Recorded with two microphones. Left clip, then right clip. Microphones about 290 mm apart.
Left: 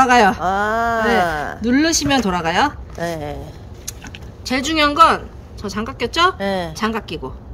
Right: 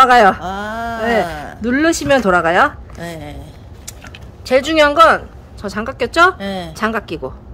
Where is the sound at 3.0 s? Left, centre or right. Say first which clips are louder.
Left 5 dB; centre.